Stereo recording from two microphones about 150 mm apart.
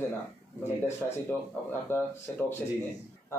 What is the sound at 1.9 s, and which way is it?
Speech, 15° left (ahead or behind).